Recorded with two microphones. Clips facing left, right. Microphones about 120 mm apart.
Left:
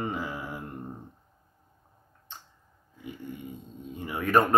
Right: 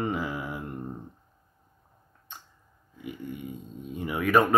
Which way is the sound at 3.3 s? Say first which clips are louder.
Right 3 dB; 15° right (ahead or behind).